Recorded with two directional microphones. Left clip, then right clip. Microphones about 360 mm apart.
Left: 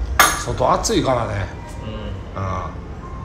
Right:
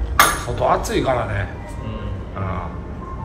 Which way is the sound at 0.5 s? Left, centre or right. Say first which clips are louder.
Left 1 dB; centre.